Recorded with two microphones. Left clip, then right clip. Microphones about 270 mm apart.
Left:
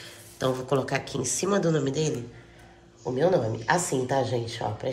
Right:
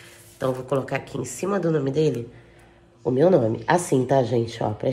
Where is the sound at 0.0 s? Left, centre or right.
Centre.